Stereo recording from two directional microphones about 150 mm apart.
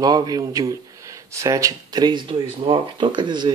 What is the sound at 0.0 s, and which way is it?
Speech, 25° right (ahead or behind).